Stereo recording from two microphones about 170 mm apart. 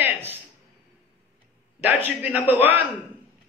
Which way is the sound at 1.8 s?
10° right (ahead or behind).